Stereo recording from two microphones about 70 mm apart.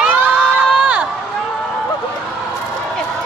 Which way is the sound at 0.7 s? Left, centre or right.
Centre.